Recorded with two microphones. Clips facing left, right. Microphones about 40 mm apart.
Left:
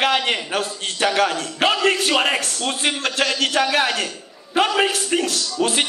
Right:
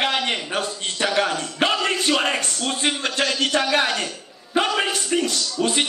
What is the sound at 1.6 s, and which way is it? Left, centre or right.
A man's voice, centre.